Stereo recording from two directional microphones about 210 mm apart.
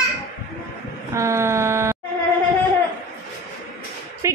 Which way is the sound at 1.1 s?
15° right (ahead or behind).